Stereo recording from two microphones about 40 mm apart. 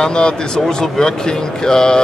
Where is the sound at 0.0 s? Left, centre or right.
Left.